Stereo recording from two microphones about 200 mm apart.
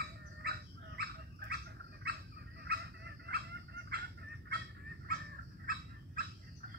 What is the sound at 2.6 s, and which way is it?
Fowl, 55° right (ahead or behind).